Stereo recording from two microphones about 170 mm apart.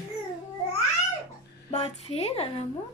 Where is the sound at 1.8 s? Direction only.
35° left (ahead or behind).